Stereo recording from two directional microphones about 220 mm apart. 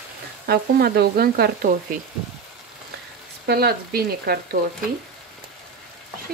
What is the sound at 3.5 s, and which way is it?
Speech, 45° right (ahead or behind).